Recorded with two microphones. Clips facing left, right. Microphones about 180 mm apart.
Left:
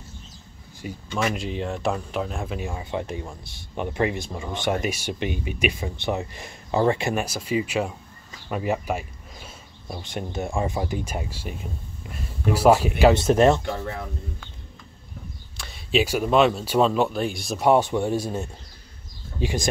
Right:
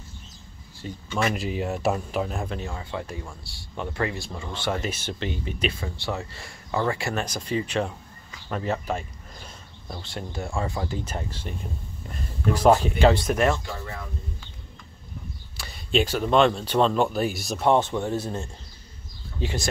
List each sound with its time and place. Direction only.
1.1 s speech: centre (ahead or behind); by 7.2 s 20° left (ahead or behind)
7.2 s speech: 10° left (ahead or behind)
13.1 s speech: 25° left (ahead or behind)
15.5 s speech: centre (ahead or behind)
17.6 s speech: 10° left (ahead or behind)